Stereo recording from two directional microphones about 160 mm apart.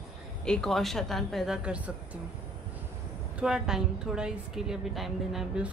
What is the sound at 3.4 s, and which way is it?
A woman's voice, 5° right (ahead or behind).